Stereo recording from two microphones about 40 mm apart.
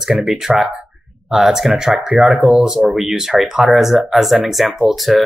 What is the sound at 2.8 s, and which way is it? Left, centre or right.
Speech, right.